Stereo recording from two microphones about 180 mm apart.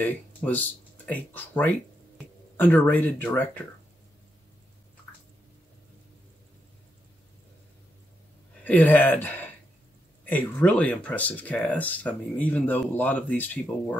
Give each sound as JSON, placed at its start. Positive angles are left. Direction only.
{"t": 0.0, "sound": "speech", "side_deg": 10}
{"t": 8.6, "sound": "speech", "side_deg": 10}